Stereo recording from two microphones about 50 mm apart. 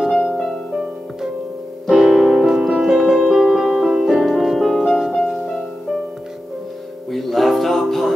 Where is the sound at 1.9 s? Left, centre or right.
Centre.